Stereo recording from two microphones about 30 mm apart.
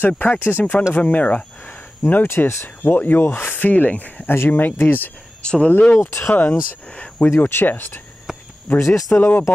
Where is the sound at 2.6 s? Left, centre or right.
Left.